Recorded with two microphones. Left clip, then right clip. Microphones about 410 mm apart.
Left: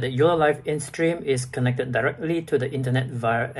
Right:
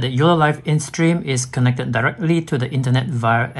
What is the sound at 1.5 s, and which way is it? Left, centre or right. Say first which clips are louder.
Speech: right 3 dB; right.